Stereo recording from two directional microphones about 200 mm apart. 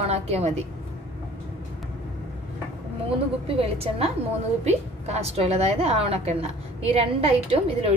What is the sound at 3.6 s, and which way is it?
A woman's voice, 30° right (ahead or behind).